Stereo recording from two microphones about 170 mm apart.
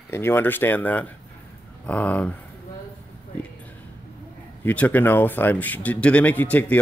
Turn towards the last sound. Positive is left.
turn(degrees=10)  # may be behind; listen again after turning